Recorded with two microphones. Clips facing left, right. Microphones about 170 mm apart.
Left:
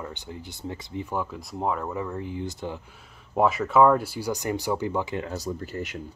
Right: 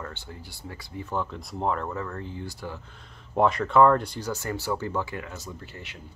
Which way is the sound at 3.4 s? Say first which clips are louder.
Even; 5° left (ahead or behind).